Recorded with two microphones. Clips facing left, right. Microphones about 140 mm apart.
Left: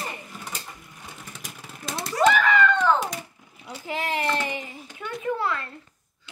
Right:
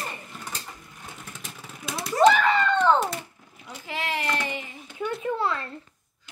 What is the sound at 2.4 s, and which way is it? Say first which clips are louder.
Hands: even; 30° right (ahead or behind).